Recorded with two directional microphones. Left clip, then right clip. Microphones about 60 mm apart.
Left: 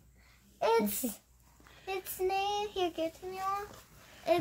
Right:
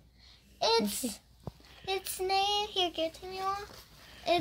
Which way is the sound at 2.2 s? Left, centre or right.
Right.